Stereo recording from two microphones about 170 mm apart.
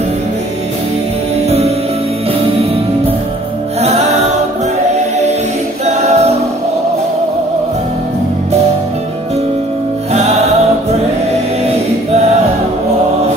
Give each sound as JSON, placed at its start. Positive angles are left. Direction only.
{"t": 5.9, "sound": "a capella", "side_deg": -40}